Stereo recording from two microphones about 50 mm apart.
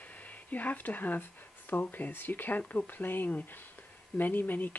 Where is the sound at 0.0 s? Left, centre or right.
Left.